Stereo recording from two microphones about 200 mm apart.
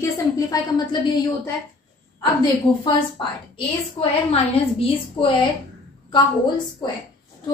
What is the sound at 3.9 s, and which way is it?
A woman's voice, 30° left (ahead or behind).